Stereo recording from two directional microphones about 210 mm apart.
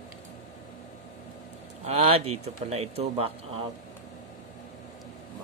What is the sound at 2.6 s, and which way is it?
Speech, 30° right (ahead or behind).